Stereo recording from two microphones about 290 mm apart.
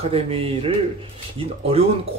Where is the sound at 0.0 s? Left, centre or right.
Centre.